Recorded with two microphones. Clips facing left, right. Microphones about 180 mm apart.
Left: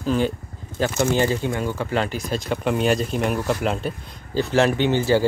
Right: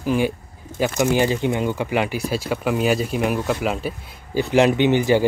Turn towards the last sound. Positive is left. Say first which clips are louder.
# right 2 dB
turn(degrees=-15)  # may be behind; listen again after turning